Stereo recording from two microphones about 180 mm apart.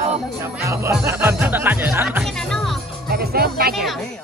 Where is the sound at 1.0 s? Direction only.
15° right (ahead or behind).